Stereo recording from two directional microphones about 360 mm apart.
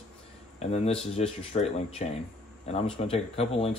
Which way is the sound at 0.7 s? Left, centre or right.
Centre.